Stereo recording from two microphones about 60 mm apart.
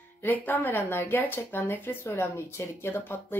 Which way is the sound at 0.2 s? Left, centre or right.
Left.